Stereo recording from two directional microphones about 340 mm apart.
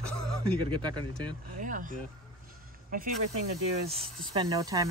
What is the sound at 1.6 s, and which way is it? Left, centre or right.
Speech, right.